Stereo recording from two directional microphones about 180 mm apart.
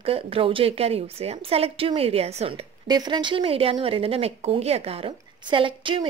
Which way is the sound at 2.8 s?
25° right (ahead or behind).